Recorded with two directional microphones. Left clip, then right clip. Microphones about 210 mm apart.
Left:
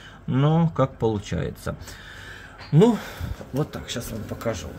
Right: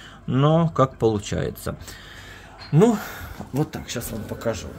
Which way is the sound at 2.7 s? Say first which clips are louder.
Even; 10° right (ahead or behind).